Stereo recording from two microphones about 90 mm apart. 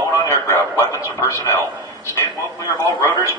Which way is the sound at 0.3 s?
30° left (ahead or behind).